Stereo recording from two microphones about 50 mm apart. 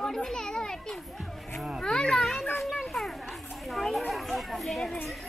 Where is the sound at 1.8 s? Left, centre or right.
Centre.